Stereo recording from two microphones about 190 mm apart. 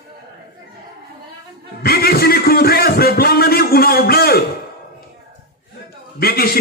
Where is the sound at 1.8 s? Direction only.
55° left (ahead or behind).